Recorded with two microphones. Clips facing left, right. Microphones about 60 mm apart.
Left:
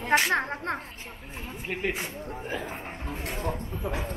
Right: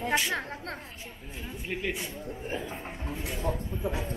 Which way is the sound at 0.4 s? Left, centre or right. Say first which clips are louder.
Left 7 dB; left.